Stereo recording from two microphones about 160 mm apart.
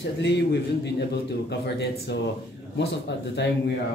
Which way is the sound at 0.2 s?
90° left.